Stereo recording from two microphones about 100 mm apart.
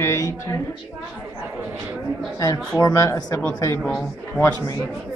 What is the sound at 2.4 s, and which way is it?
Speech, 35° left (ahead or behind).